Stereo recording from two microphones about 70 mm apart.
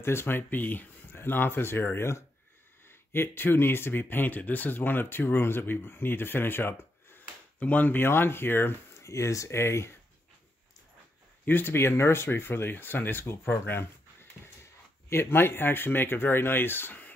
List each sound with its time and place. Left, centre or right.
0.0 s speech: left
11.4 s speech: left